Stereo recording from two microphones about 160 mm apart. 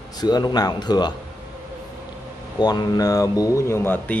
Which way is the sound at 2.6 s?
25° left (ahead or behind).